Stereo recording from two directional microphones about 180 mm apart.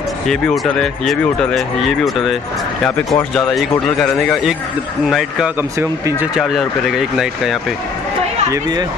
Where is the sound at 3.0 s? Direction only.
5° left (ahead or behind).